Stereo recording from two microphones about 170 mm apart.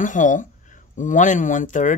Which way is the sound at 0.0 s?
50° left (ahead or behind).